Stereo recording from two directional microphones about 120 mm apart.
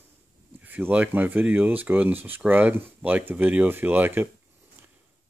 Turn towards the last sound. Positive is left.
turn(degrees=-15)  # may be behind; listen again after turning